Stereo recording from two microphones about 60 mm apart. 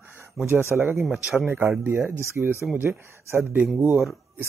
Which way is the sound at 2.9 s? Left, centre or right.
Right.